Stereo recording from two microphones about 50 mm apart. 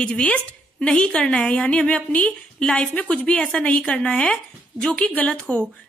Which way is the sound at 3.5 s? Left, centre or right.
Left.